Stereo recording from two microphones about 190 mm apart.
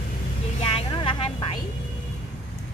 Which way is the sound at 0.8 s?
25° left (ahead or behind).